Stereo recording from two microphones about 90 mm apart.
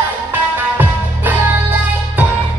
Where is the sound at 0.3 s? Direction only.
20° right (ahead or behind).